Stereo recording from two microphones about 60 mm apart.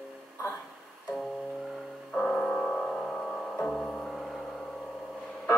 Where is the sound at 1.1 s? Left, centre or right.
Centre.